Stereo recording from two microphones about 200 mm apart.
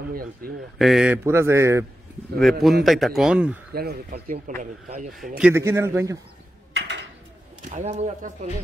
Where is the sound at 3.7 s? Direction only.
50° right (ahead or behind).